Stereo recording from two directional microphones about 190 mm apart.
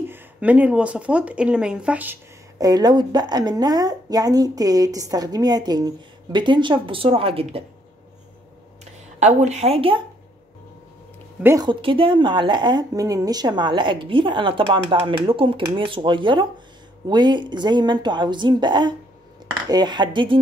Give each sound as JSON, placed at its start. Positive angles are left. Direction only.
{"t": 0.1, "sound": "speech", "side_deg": -10}
{"t": 2.6, "sound": "a woman's voice", "side_deg": -20}
{"t": 9.2, "sound": "speech", "side_deg": -40}
{"t": 11.4, "sound": "a woman's voice", "side_deg": -20}